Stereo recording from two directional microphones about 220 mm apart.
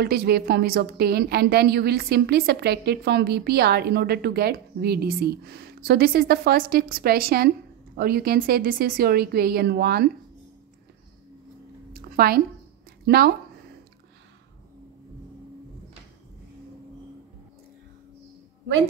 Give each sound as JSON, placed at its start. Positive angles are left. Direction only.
{"t": 0.0, "sound": "a woman's voice", "side_deg": -45}
{"t": 11.9, "sound": "a sound", "side_deg": -45}
{"t": 13.0, "sound": "speech", "side_deg": -45}